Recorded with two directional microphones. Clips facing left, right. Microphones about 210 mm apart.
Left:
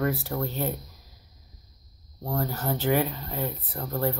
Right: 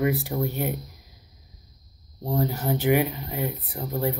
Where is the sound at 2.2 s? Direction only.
15° right (ahead or behind).